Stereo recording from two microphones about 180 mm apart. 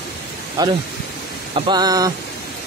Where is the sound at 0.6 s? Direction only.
20° right (ahead or behind).